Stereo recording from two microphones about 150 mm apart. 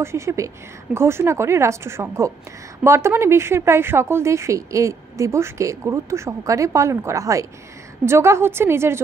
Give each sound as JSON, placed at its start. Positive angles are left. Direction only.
{"t": 0.0, "sound": "a woman's voice", "side_deg": -20}